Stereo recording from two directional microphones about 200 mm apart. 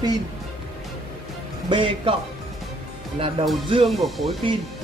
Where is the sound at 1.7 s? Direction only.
25° right (ahead or behind).